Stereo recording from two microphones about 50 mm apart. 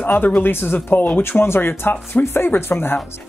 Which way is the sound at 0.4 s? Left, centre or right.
Left.